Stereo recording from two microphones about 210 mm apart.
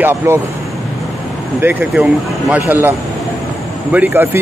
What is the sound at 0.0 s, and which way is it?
Speech, 10° right (ahead or behind).